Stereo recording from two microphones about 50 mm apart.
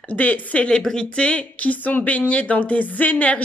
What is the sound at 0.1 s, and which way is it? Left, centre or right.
Speech, left.